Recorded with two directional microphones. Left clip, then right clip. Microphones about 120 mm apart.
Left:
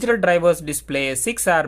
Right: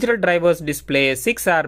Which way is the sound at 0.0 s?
25° right (ahead or behind).